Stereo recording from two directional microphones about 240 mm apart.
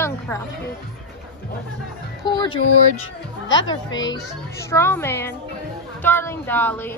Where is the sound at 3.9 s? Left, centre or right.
Centre.